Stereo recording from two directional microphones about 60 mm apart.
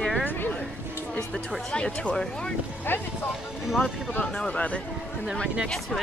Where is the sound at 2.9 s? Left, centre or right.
Left.